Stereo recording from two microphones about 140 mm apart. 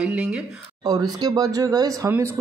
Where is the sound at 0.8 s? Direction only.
30° right (ahead or behind).